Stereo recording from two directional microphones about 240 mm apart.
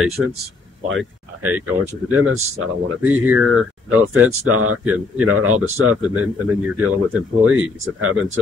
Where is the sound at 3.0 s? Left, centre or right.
Centre.